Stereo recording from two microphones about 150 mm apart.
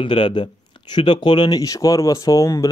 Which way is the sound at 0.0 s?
35° left (ahead or behind).